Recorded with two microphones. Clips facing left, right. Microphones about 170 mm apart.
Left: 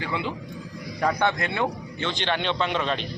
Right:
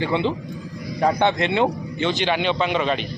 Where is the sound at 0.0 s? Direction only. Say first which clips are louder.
Right 7 dB; 25° right (ahead or behind).